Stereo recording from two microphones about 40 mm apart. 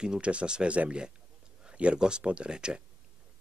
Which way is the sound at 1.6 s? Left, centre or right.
Right.